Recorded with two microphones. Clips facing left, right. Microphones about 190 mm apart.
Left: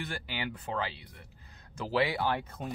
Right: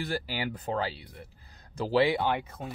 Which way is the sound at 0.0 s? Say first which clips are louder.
Right 5 dB; 35° right (ahead or behind).